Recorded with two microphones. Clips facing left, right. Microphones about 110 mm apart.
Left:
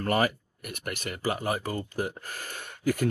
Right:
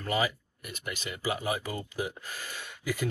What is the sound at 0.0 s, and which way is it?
Speech, 55° left (ahead or behind).